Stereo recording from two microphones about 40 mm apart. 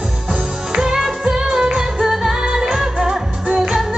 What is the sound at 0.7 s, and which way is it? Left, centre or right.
Music, centre.